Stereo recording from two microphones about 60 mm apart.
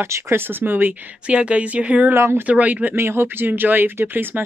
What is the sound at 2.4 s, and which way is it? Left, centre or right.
Speech, right.